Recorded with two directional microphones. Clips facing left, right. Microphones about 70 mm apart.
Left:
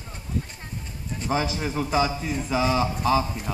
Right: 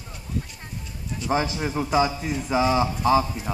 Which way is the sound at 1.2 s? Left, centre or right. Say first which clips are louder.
Right 2 dB; left.